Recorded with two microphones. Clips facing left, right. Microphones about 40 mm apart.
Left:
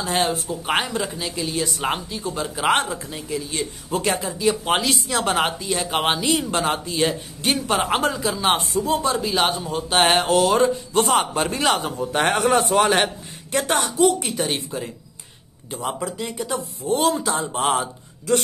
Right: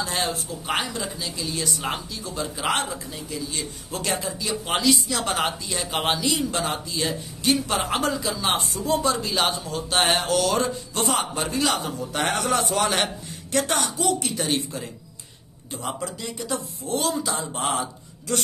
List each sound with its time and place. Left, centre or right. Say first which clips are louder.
0.0 s speech: left 4 dB; left
2.7 s a man's voice: left 7 dB; left
3.9 s speech: left 5 dB; centre
4.4 s speech: left 5 dB; left
6.2 s a man's voice: left 4 dB; left
8.9 s speech: even; centre
9.2 s speech: left 3 dB; centre
9.6 s speech: left 4 dB; left
16.0 s a man's voice: left 4 dB; left